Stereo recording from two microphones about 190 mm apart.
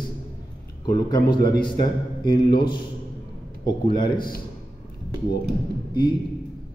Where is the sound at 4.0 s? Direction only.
50° left (ahead or behind).